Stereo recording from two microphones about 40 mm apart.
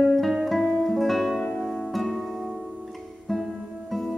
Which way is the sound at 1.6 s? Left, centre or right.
Centre.